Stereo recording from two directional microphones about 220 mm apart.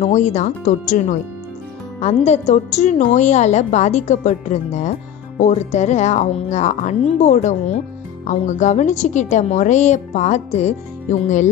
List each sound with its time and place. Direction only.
0.0 s a woman's voice: 30° left (ahead or behind)